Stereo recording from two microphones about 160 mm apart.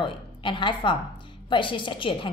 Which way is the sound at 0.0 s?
30° left (ahead or behind).